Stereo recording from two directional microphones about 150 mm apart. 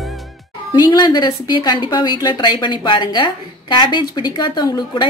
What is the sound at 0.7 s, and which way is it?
A woman's voice, 25° left (ahead or behind).